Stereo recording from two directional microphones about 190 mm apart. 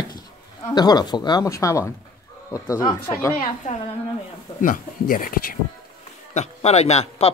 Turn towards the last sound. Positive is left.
turn(degrees=35)  # may be behind; listen again after turning